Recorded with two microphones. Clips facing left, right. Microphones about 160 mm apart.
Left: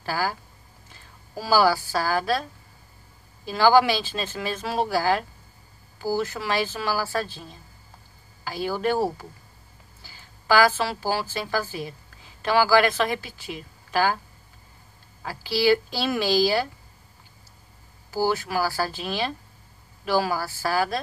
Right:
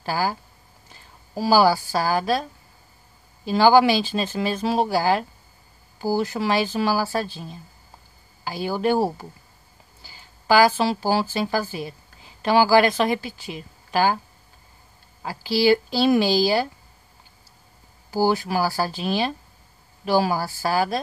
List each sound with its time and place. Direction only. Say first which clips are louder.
0.0 s a woman's voice: right 3 dB; 20° right (ahead or behind)
3.4 s a woman's voice: right 3 dB; 20° right (ahead or behind)
8.5 s a woman's voice: right 3 dB; 20° right (ahead or behind)
10.4 s a woman's voice: right 3 dB; 20° right (ahead or behind)
15.2 s a woman's voice: right 2 dB; 15° right (ahead or behind)
18.1 s a woman's voice: right 3 dB; 15° right (ahead or behind)